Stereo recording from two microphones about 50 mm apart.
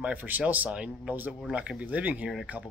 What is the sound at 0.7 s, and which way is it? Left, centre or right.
Speech, right.